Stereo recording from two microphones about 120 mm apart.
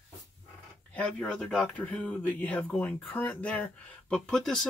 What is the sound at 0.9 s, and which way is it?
Speech, 5° left (ahead or behind).